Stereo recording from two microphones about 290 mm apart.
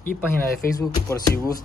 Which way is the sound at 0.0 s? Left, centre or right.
Left.